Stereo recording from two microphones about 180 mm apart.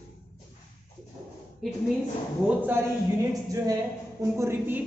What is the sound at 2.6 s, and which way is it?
A man's voice, 15° right (ahead or behind).